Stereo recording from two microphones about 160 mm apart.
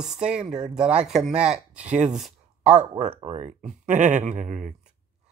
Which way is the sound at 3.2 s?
45° right (ahead or behind).